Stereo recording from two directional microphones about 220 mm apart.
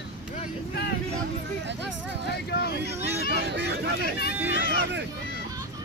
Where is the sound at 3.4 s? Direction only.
50° right (ahead or behind).